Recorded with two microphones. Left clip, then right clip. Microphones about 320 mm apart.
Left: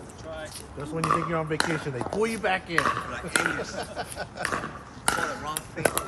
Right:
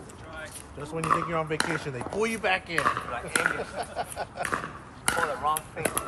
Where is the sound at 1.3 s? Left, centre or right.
Right.